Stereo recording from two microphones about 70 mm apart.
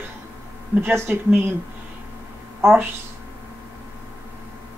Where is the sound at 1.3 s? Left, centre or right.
Right.